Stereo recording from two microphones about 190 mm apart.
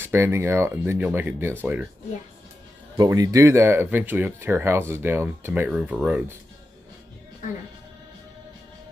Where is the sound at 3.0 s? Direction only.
20° right (ahead or behind).